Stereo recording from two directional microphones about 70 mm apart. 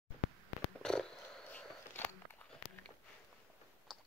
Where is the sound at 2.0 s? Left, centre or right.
Left.